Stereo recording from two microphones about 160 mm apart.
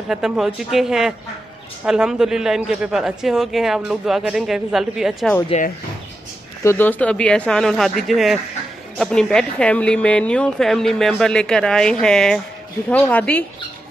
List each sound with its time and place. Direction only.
0.1 s speech: 5° right (ahead or behind)
5.5 s speech: 40° left (ahead or behind)
6.6 s speech: 15° left (ahead or behind)